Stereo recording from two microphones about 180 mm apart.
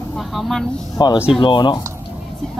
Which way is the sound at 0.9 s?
25° left (ahead or behind).